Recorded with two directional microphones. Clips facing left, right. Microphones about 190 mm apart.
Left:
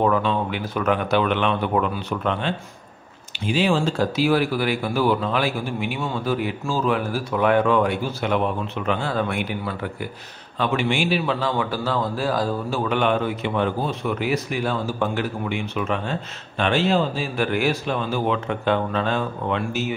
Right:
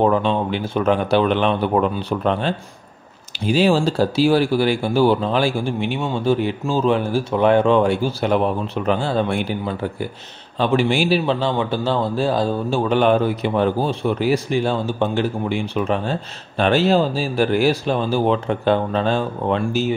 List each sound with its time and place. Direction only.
0.0 s a man's voice: 30° right (ahead or behind)